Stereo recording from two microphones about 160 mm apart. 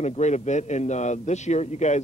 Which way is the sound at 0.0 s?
45° left (ahead or behind).